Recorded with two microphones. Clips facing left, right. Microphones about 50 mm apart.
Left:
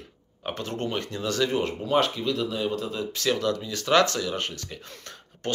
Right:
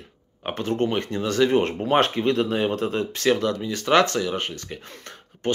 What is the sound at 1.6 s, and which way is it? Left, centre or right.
Speech, right.